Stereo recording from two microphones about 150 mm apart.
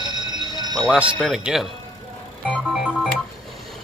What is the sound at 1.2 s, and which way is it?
Speech, 5° right (ahead or behind).